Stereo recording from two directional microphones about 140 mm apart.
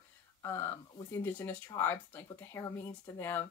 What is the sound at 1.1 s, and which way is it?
Speech, 15° left (ahead or behind).